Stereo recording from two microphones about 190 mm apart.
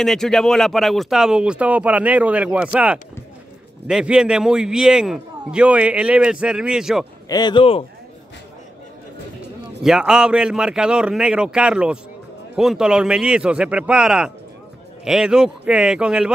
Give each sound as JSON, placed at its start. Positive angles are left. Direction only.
{"t": 0.0, "sound": "speech", "side_deg": 0}
{"t": 7.2, "sound": "speech", "side_deg": 20}
{"t": 9.8, "sound": "speech", "side_deg": -5}